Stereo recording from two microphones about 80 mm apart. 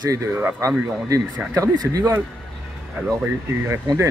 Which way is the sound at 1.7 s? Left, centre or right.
Right.